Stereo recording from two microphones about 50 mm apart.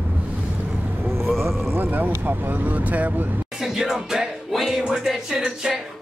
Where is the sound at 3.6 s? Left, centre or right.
Centre.